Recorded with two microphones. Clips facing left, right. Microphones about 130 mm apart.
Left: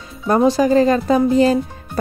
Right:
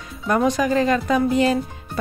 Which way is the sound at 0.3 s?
30° left (ahead or behind).